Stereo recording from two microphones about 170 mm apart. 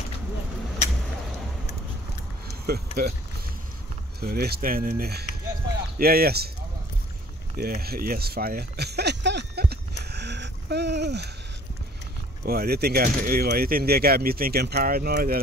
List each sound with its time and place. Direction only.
2.6 s speech: 65° right (ahead or behind)
4.2 s speech: 65° right (ahead or behind)
7.5 s a sound: 65° right (ahead or behind); by 11.2 s 80° right
12.4 s speech: 65° right (ahead or behind)